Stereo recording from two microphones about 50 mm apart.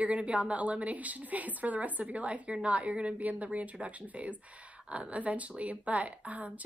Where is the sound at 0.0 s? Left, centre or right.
Right.